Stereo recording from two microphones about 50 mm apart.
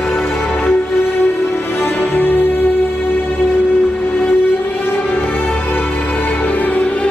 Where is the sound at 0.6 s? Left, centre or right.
Left.